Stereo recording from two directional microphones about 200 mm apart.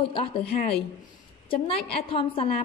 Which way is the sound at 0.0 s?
25° left (ahead or behind).